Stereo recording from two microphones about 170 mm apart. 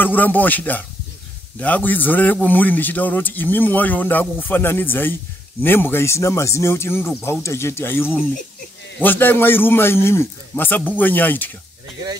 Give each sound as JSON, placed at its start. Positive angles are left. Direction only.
{"t": 0.0, "sound": "a man's voice", "side_deg": 10}